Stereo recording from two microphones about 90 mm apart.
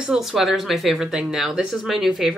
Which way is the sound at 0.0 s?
5° right (ahead or behind).